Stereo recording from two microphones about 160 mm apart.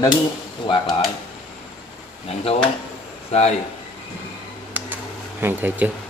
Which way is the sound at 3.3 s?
45° left (ahead or behind).